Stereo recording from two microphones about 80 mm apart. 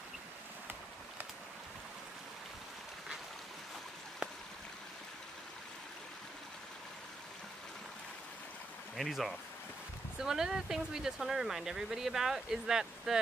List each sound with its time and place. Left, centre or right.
8.9 s speech: centre